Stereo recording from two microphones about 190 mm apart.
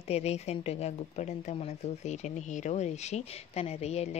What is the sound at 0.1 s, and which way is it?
Speech, 35° left (ahead or behind).